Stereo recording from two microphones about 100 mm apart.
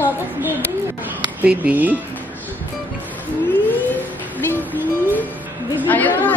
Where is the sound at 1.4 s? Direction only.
15° right (ahead or behind).